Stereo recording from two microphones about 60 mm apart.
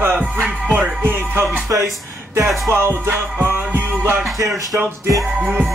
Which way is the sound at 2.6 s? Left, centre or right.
Right.